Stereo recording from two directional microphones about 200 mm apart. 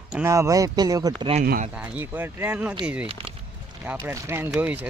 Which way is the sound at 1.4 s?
45° right (ahead or behind).